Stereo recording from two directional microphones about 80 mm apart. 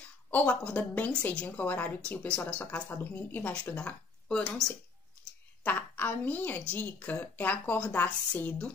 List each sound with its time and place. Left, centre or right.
0.0 s a woman's voice: centre